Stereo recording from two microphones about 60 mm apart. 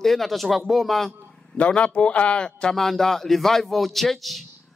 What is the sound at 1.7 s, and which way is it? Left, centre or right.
A man's voice, centre.